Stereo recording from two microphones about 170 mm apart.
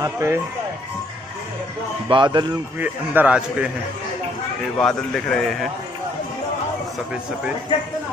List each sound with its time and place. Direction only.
0.0 s a man's voice: 15° right (ahead or behind)
2.0 s speech: 25° right (ahead or behind)
2.8 s a man's voice: 10° right (ahead or behind)
4.7 s a man's voice: 5° left (ahead or behind)